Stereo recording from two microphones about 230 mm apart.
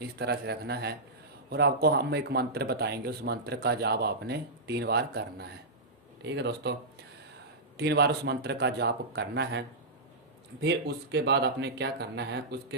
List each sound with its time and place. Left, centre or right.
0.0 s speech: right
7.7 s speech: right